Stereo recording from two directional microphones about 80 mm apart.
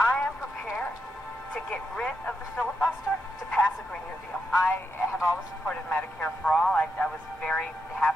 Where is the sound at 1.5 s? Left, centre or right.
Centre.